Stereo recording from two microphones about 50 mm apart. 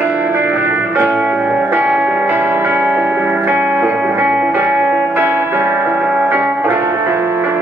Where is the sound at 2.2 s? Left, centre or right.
Right.